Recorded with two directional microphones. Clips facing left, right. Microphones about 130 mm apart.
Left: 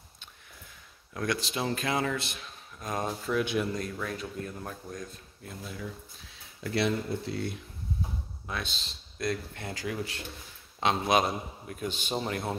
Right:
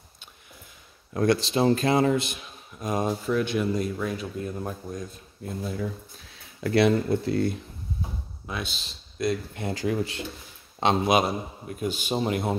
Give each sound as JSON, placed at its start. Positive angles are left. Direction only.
{"t": 1.1, "sound": "speech", "side_deg": -35}
{"t": 2.1, "sound": "speech", "side_deg": -15}
{"t": 3.3, "sound": "speech", "side_deg": 0}
{"t": 5.6, "sound": "speech", "side_deg": -40}
{"t": 6.6, "sound": "speech", "side_deg": -75}
{"t": 8.5, "sound": "speech", "side_deg": -5}
{"t": 9.5, "sound": "speech", "side_deg": -20}
{"t": 11.1, "sound": "speech", "side_deg": -10}